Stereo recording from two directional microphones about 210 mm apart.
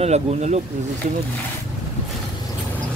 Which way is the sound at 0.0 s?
30° right (ahead or behind).